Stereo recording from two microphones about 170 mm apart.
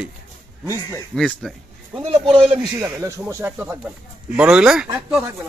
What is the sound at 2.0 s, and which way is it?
Speech, 30° right (ahead or behind).